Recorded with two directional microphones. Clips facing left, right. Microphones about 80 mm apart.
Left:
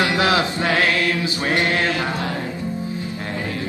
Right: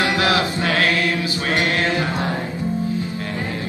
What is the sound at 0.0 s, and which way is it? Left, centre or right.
Chant, left.